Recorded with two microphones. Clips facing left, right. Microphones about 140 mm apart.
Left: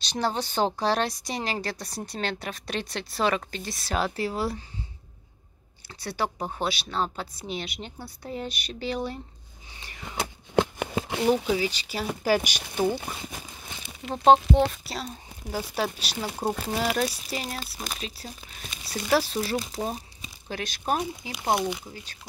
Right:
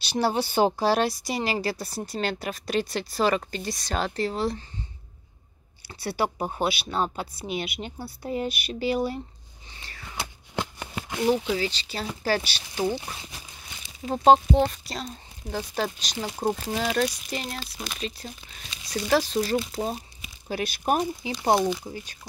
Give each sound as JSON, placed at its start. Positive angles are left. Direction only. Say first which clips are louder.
{"t": 0.0, "sound": "speech", "louder": "right 3 dB", "side_deg": -10}
{"t": 6.0, "sound": "a woman's voice", "louder": "right 3 dB", "side_deg": -10}
{"t": 9.8, "sound": "a sound", "louder": "left 3 dB", "side_deg": 20}
{"t": 11.2, "sound": "speech", "louder": "even", "side_deg": 10}
{"t": 14.1, "sound": "speech", "louder": "right 1 dB", "side_deg": 0}
{"t": 17.6, "sound": "speech", "louder": "even", "side_deg": 45}
{"t": 18.2, "sound": "speech", "louder": "even", "side_deg": 0}
{"t": 20.4, "sound": "a woman's voice", "louder": "right 3 dB", "side_deg": -10}